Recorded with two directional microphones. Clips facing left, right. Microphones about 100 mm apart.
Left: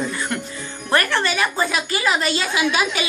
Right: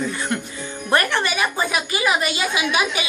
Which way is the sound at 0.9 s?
20° right (ahead or behind).